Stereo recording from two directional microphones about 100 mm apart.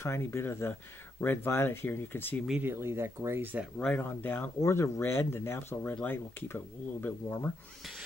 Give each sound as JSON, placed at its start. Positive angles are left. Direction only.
{"t": 0.0, "sound": "speech", "side_deg": 25}
{"t": 2.6, "sound": "speech", "side_deg": -25}
{"t": 3.7, "sound": "speech", "side_deg": 15}